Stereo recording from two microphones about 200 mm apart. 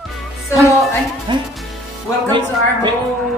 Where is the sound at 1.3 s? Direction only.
25° right (ahead or behind).